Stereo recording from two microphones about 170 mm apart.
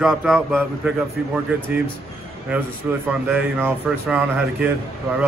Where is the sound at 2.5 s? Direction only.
10° right (ahead or behind).